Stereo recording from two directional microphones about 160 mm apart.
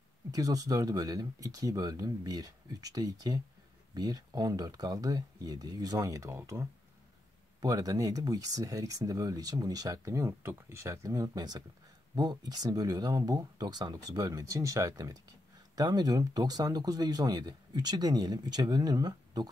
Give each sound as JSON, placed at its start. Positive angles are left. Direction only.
{"t": 0.3, "sound": "speech", "side_deg": -20}